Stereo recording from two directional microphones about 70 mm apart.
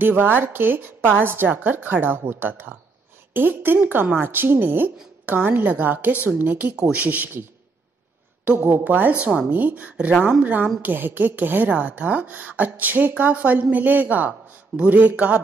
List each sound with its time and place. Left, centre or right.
0.0 s speech: right
8.5 s speech: right